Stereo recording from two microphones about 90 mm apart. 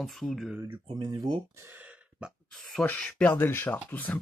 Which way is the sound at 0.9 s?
55° right (ahead or behind).